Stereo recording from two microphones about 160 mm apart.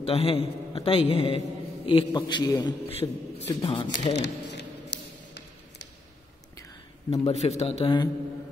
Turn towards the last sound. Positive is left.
turn(degrees=40)  # may be behind; listen again after turning